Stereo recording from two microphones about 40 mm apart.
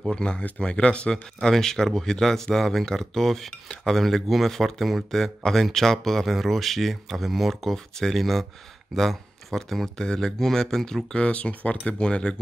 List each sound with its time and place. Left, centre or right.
0.1 s speech: left
1.1 s speech: centre
4.0 s speech: centre
7.7 s speech: centre
11.1 s speech: left